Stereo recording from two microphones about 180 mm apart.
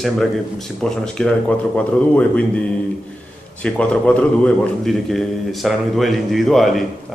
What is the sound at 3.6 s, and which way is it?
A man's voice, 5° left (ahead or behind).